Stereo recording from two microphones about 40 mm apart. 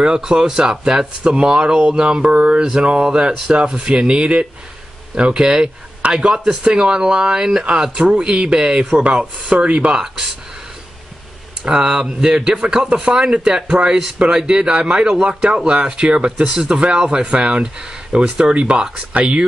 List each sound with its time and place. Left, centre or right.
0.0 s a man's voice: centre
2.6 s a man's voice: centre
9.9 s speech: centre
11.6 s a man's voice: right
18.4 s a man's voice: right